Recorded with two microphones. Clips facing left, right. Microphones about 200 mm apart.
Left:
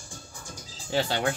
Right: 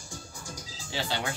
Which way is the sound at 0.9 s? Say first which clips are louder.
Left 6 dB; 50° left (ahead or behind).